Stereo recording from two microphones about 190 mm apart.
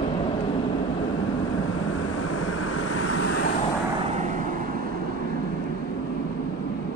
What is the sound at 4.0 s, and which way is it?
Vehicle, 35° right (ahead or behind).